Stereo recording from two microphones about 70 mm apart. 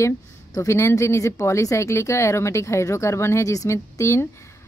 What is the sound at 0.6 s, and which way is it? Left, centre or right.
Speech, left.